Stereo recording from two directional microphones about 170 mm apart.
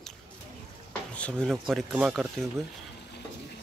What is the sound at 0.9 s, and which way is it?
Speech, 5° left (ahead or behind).